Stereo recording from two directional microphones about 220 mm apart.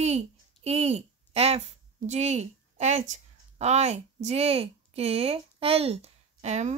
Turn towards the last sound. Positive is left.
turn(degrees=-30)  # may be behind; listen again after turning